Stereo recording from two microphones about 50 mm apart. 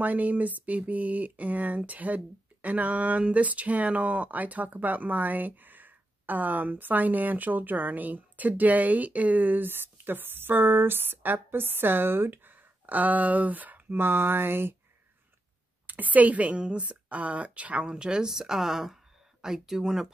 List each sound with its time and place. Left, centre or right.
0.0 s speech: right
13.9 s a sound: right
15.9 s a woman's voice: right
17.8 s speech: centre